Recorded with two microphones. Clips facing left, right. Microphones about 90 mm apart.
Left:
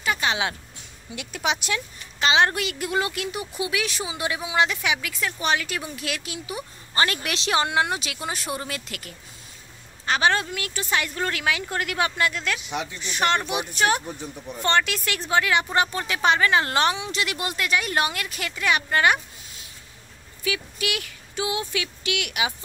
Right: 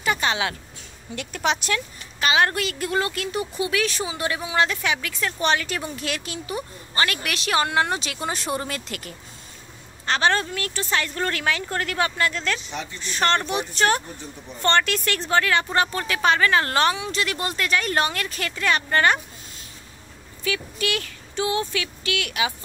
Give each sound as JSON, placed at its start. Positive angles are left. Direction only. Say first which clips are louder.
{"t": 0.0, "sound": "music", "louder": "right 2 dB", "side_deg": 0}
{"t": 0.3, "sound": "speech", "louder": "right 1 dB", "side_deg": 20}
{"t": 1.1, "sound": "speech", "louder": "right 2 dB", "side_deg": 10}
{"t": 2.1, "sound": "speech", "louder": "even", "side_deg": 25}
{"t": 7.0, "sound": "speech", "louder": "left 1 dB", "side_deg": 25}
{"t": 20.4, "sound": "speech", "louder": "right 2 dB", "side_deg": 10}